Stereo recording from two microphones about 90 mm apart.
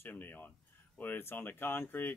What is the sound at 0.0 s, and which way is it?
Speech, 20° left (ahead or behind).